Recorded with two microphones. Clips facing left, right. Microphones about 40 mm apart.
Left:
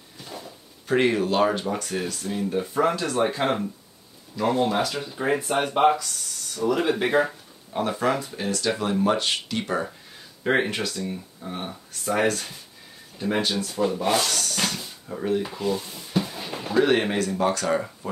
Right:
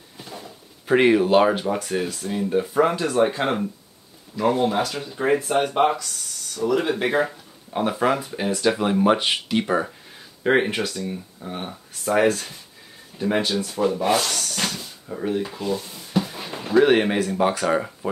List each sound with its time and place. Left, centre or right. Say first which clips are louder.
0.2 s drawer open or close: right 2 dB; right
0.8 s speech: right 5 dB; centre
8.0 s speech: right 4 dB; centre
10.7 s speech: right 3 dB; right
11.1 s speech: right 2 dB; centre
16.1 s a sound: right 2 dB; centre
16.8 s speech: right 2 dB; centre